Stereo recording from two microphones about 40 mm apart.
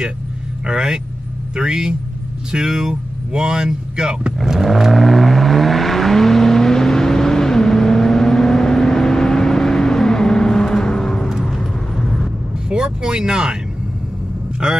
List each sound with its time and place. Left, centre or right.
0.7 s speech: right
4.5 s vehicle: centre
12.6 s speech: centre